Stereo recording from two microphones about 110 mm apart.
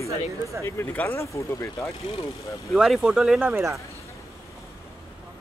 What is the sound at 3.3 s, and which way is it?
Speech, 15° right (ahead or behind).